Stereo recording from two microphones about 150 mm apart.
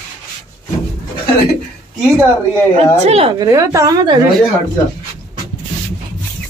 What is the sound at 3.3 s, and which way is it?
Speech, 20° right (ahead or behind).